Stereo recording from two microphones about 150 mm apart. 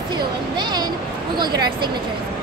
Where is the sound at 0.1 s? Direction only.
30° right (ahead or behind).